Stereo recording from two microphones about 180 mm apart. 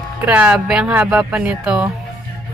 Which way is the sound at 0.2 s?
10° right (ahead or behind).